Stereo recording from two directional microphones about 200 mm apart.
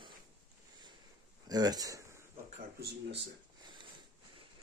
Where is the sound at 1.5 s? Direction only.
20° right (ahead or behind).